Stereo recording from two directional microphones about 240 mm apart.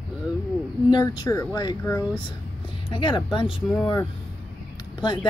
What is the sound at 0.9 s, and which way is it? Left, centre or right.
Speech, centre.